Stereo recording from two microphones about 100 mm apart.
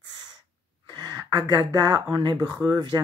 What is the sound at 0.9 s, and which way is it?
Speech, 45° right (ahead or behind).